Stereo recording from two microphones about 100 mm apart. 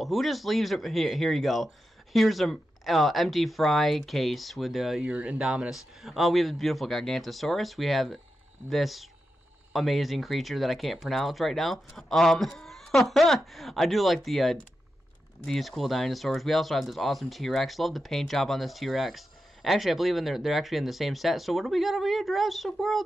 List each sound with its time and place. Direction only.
0.0 s speech: centre (ahead or behind)
5.0 s speech: 15° right (ahead or behind)